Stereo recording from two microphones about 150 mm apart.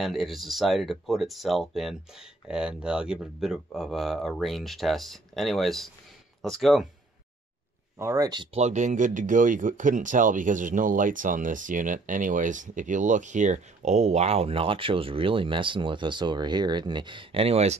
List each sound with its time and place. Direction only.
0.0 s speech: centre (ahead or behind)
8.0 s speech: 20° right (ahead or behind)
8.5 s speech: 50° right (ahead or behind)